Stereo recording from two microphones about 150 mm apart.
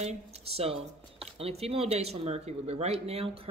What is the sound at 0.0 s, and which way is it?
Speech, 40° right (ahead or behind).